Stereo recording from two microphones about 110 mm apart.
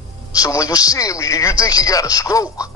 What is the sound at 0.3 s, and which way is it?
A man's voice, 30° left (ahead or behind).